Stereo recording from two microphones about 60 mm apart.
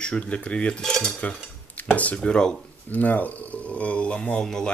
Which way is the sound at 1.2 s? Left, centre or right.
Left.